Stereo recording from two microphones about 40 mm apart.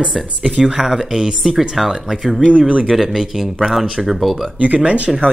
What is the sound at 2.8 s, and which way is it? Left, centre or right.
Speech, centre.